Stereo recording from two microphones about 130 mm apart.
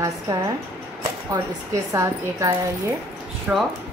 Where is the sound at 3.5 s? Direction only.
10° right (ahead or behind).